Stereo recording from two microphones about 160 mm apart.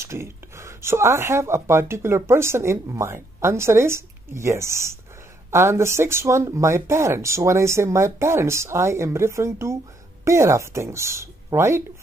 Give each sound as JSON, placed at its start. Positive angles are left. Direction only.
{"t": 0.0, "sound": "speech", "side_deg": -15}